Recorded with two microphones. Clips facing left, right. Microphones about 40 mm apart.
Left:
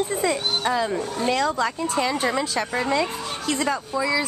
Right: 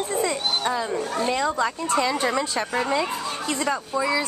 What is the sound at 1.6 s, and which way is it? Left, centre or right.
A woman's voice, centre.